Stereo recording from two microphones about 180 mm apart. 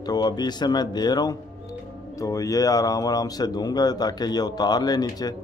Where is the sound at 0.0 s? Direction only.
20° left (ahead or behind).